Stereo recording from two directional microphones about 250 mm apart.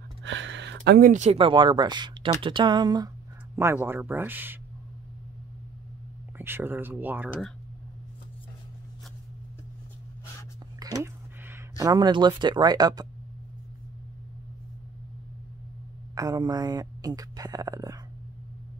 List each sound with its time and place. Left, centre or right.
0.2 s speech: right; by 4.6 s centre
6.3 s speech: centre
10.8 s a sound: centre
11.4 s speech: centre
16.2 s speech: centre